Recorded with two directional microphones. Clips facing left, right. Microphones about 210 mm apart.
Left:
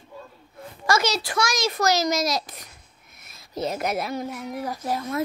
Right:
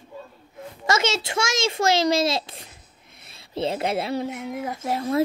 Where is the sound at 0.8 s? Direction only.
25° right (ahead or behind).